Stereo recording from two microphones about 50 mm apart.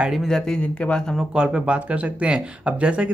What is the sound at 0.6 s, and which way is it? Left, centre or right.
Speech, left.